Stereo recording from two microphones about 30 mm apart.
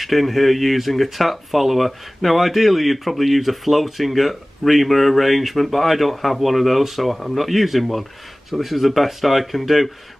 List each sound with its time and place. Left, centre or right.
0.0 s speech: centre